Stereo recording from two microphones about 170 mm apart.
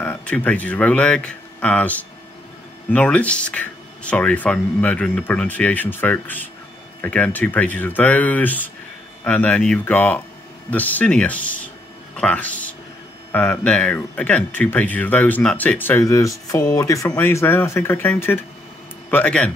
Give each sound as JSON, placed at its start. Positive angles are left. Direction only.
{"t": 0.0, "sound": "a man's voice", "side_deg": 10}